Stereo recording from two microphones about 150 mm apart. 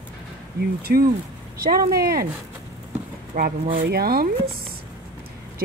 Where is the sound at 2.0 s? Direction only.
90° right.